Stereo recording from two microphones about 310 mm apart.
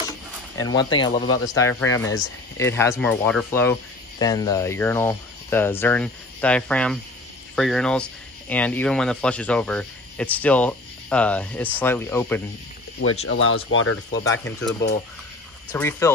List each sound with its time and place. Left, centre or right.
0.6 s speech: centre
13.3 s speech: left
14.2 s speech: centre